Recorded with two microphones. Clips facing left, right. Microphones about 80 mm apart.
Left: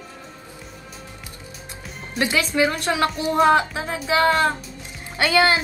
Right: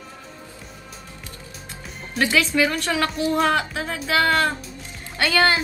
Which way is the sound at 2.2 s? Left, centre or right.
Left.